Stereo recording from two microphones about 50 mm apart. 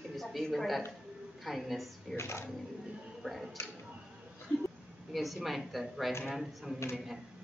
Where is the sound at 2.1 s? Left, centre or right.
Left.